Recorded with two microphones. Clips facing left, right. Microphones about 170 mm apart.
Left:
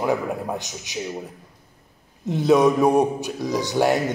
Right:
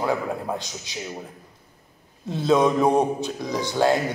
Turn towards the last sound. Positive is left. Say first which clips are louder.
# left 1 dB
turn(degrees=15)  # may be behind; listen again after turning